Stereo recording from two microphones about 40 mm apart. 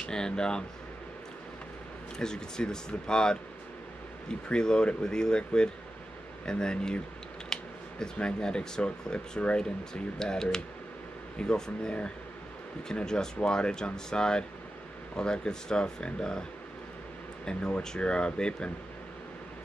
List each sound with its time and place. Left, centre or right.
0.0 s speech: centre
2.1 s speech: centre
10.1 s speech: centre
17.5 s speech: centre